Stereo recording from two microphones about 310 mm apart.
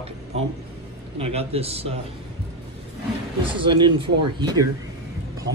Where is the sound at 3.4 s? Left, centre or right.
Centre.